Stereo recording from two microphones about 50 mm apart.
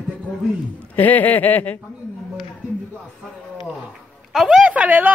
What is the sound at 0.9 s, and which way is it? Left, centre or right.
Speech, left.